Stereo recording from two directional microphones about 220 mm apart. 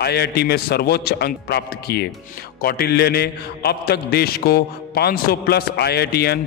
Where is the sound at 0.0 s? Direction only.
45° left (ahead or behind).